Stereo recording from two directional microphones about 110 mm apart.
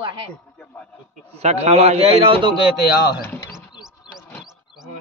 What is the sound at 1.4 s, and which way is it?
A man's voice, 75° right (ahead or behind).